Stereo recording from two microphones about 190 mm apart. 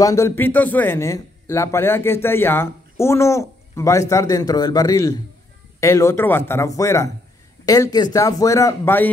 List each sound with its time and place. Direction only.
0.0 s a man's voice: 15° left (ahead or behind)